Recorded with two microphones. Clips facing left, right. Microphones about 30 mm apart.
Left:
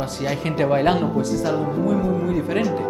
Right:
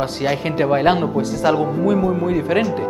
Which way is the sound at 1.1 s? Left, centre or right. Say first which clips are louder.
Right 4 dB; right.